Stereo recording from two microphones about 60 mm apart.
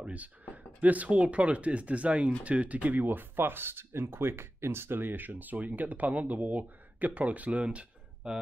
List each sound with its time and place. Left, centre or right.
0.0 s speech: right